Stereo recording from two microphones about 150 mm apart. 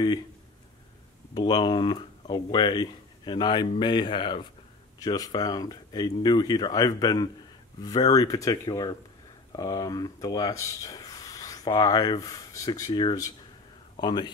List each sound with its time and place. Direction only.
1.3 s speech: 30° left (ahead or behind)